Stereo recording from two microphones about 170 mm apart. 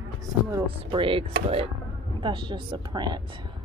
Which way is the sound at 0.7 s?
30° right (ahead or behind).